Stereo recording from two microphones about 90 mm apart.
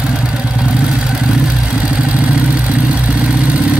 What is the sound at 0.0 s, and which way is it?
Vehicle, 10° right (ahead or behind).